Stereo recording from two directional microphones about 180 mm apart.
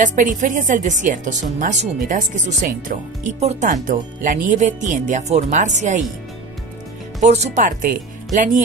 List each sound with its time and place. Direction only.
0.0 s speech: 45° right (ahead or behind)
7.2 s speech: 40° right (ahead or behind)